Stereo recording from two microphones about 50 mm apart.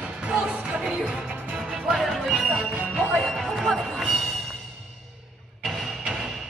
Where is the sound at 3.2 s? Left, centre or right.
Centre.